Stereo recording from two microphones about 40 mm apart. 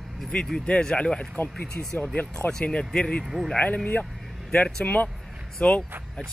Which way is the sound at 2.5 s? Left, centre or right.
Left.